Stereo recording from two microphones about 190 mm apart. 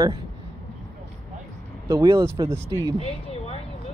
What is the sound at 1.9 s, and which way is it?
Speech, 20° right (ahead or behind).